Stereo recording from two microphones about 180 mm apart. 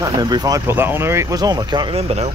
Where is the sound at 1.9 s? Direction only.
35° right (ahead or behind).